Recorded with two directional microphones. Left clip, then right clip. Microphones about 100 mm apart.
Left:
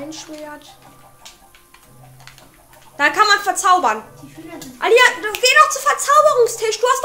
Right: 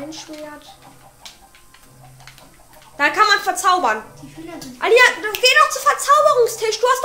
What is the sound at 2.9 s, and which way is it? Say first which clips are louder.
A woman's voice: left 1 dB; 35° left (ahead or behind).